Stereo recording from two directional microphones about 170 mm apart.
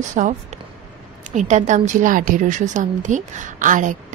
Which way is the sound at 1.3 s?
45° right (ahead or behind).